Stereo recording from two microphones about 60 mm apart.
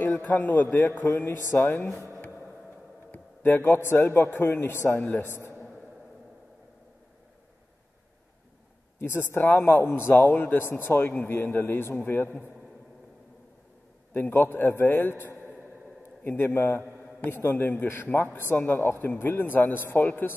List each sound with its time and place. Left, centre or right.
0.1 s a man's voice: left
1.0 s speech: left
3.1 s a man's voice: left
9.0 s speech: left
14.1 s a man's voice: left